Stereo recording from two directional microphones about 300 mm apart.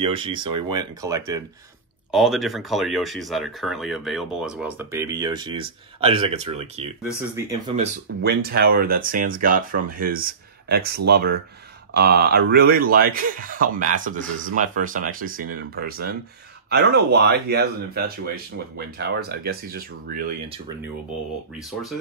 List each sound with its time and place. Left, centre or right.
0.0 s speech: centre
2.0 s speech: centre; by 6.9 s right
7.2 s speech: centre
8.2 s speech: right